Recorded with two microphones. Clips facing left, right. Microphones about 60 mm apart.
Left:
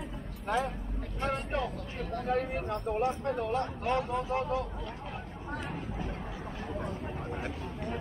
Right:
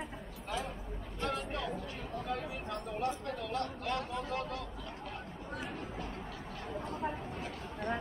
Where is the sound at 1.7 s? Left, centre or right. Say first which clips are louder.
Left 3 dB; left.